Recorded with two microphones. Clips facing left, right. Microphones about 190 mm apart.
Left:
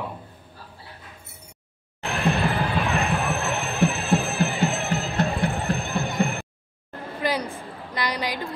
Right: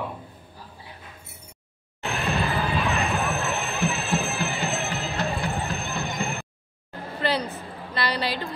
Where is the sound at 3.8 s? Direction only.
65° left (ahead or behind).